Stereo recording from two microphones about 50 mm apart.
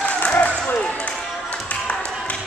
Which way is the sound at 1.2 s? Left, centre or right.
Centre.